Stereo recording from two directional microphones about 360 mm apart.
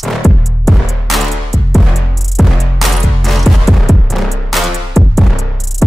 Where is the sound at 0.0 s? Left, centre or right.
Centre.